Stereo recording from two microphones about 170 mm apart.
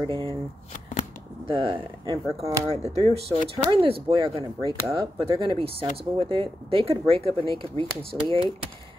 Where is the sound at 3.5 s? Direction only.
25° right (ahead or behind).